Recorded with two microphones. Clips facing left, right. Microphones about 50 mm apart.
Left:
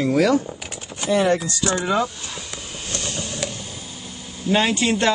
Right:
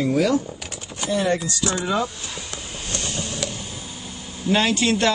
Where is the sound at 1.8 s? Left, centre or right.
Left.